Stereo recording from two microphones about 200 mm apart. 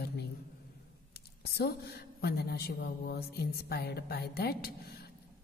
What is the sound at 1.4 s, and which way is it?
A woman's voice, 55° left (ahead or behind).